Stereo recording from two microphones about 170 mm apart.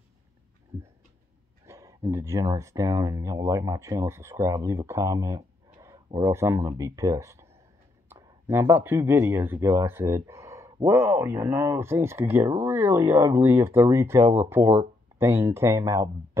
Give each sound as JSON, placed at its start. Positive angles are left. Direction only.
{"t": 1.7, "sound": "speech", "side_deg": -20}